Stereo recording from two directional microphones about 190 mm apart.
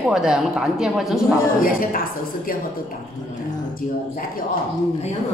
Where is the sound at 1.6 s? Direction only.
45° left (ahead or behind).